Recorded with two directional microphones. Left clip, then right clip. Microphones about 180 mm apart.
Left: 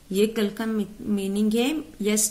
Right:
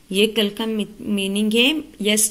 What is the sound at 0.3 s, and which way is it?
A woman's voice, 5° right (ahead or behind).